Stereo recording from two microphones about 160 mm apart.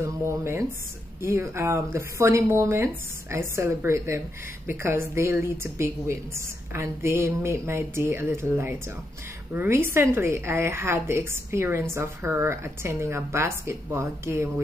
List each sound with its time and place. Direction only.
0.0 s a woman's voice: 15° right (ahead or behind)